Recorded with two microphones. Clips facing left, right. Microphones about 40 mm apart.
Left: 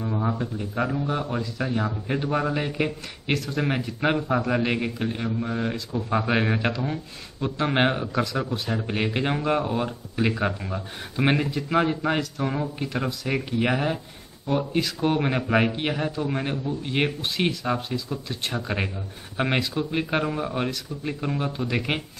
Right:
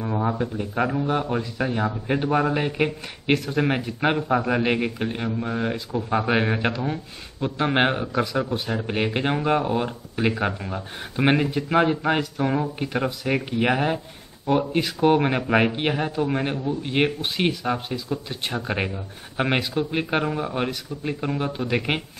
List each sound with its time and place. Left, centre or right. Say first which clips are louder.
0.0 s a man's voice: right 2 dB; centre
11.5 s a man's voice: right 3 dB; right
12.0 s speech: right 2 dB; centre